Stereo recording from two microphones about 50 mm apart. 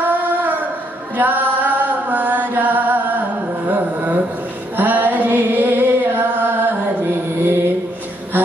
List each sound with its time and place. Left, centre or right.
0.0 s a sound: right
1.1 s chant: right
4.7 s mantra: right